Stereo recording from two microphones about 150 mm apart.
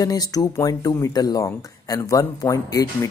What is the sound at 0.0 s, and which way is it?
Speech, 25° left (ahead or behind).